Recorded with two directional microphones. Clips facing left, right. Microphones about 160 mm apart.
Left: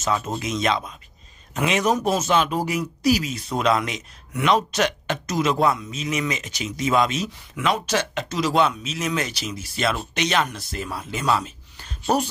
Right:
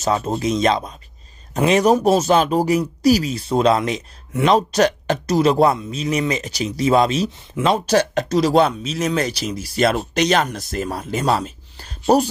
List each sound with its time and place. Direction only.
0.0 s speech: 35° right (ahead or behind)